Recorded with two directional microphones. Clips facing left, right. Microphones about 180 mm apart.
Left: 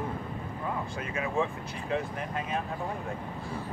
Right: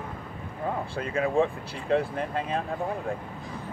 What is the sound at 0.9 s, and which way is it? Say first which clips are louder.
Speech: right 8 dB; 35° right (ahead or behind).